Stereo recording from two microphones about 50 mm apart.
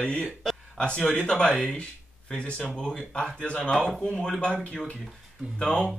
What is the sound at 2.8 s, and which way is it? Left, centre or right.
Speech, centre.